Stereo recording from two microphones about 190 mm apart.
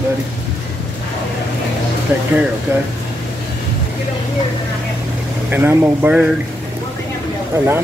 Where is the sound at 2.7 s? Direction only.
10° right (ahead or behind).